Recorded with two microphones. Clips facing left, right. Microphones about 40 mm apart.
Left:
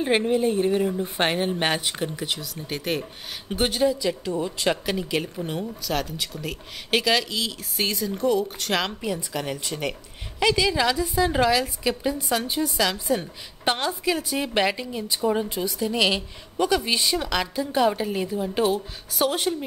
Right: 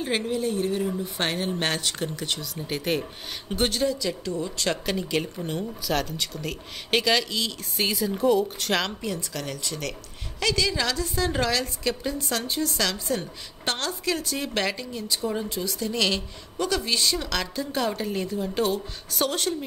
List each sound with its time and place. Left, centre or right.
0.0 s a woman's voice: left
4.8 s a woman's voice: centre